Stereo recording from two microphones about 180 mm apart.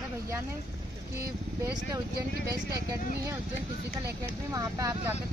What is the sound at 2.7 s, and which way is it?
Speech, 15° right (ahead or behind).